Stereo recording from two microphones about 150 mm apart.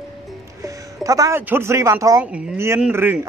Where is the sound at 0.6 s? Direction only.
20° right (ahead or behind).